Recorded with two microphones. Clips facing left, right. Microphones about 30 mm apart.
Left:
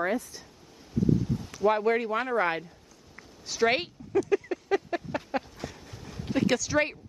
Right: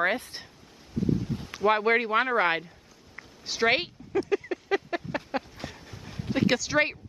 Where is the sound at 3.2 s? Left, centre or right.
Right.